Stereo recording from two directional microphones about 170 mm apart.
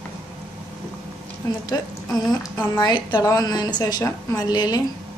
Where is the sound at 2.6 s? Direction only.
20° left (ahead or behind).